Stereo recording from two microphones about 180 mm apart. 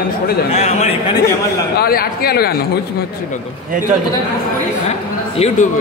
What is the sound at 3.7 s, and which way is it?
Speech, 45° right (ahead or behind).